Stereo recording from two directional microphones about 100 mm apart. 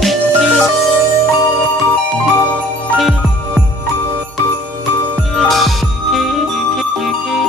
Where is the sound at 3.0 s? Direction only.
Centre (ahead or behind).